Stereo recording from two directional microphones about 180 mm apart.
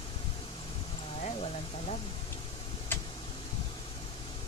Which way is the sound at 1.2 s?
35° left (ahead or behind).